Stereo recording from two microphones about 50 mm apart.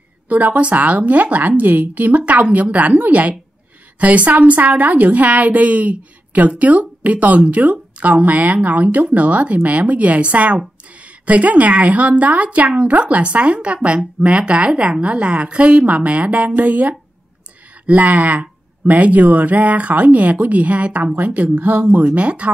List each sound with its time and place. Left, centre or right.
0.3 s a woman's voice: right